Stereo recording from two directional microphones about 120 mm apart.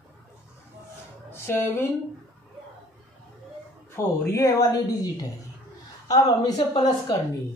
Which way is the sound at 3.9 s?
25° left (ahead or behind).